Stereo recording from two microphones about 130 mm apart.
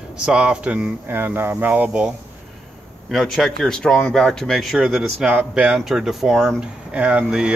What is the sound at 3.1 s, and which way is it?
Speech, centre (ahead or behind).